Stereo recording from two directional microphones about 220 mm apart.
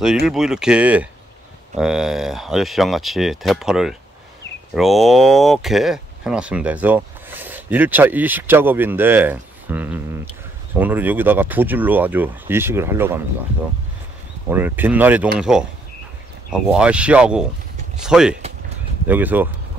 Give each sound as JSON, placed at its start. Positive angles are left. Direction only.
{"t": 0.3, "sound": "speech", "side_deg": 0}
{"t": 14.5, "sound": "speech", "side_deg": -10}
{"t": 16.7, "sound": "speech", "side_deg": -5}